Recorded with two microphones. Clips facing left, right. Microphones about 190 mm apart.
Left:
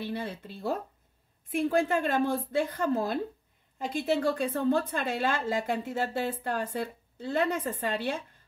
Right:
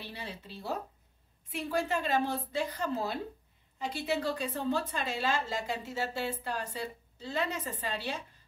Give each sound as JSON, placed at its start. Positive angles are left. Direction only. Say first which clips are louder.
{"t": 0.0, "sound": "a woman's voice", "louder": "left 9 dB", "side_deg": 50}